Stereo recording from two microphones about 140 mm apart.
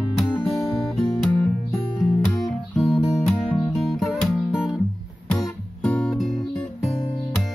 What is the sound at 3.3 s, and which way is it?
Music, 5° left (ahead or behind).